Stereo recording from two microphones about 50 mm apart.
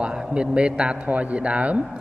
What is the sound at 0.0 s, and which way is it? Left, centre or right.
A man's voice, centre.